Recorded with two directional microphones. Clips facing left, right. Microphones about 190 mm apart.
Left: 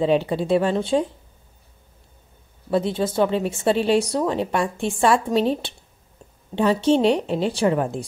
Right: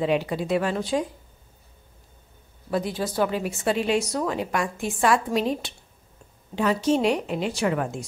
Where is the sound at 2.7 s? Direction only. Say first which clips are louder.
Left 5 dB; 25° left (ahead or behind).